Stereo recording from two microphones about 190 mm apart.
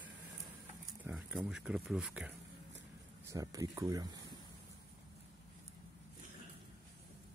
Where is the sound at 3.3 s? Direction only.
15° right (ahead or behind).